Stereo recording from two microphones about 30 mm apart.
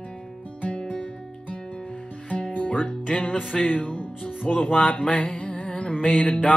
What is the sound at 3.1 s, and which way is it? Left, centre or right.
Speech, left.